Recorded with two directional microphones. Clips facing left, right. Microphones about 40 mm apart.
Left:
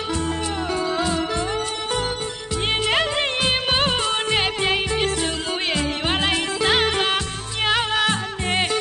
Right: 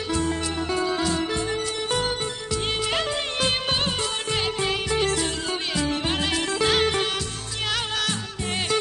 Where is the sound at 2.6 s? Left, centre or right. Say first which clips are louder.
Left 6 dB; left.